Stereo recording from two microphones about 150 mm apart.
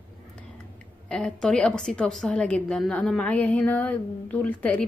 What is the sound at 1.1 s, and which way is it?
A woman's voice, 5° left (ahead or behind).